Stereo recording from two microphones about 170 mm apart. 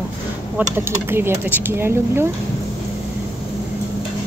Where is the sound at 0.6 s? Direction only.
15° right (ahead or behind).